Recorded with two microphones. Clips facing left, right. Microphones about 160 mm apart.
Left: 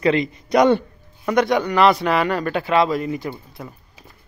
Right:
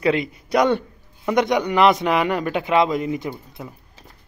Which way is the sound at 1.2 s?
20° right (ahead or behind).